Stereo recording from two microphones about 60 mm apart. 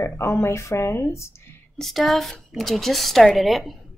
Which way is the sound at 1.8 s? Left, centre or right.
Centre.